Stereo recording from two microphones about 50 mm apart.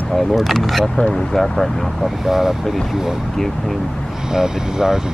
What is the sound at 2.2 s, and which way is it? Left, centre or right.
Speech, centre.